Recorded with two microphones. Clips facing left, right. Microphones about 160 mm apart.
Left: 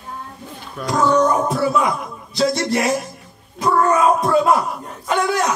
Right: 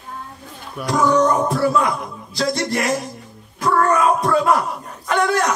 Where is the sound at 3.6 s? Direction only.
20° left (ahead or behind).